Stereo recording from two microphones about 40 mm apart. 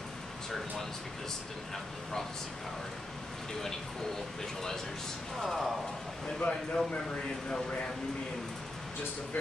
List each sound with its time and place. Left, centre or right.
5.4 s speech: centre
6.2 s speech: left